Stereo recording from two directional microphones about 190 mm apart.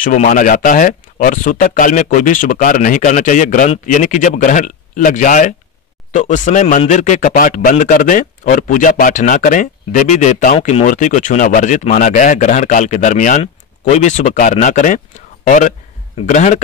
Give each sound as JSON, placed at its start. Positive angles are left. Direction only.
{"t": 0.0, "sound": "speech", "side_deg": 40}